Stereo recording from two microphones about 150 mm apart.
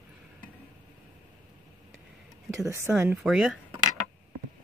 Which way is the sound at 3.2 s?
Centre (ahead or behind).